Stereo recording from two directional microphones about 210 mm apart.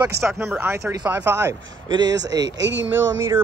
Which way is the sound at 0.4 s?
10° right (ahead or behind).